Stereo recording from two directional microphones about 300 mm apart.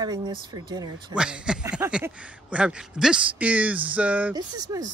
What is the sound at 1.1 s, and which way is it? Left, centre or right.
Speech, centre.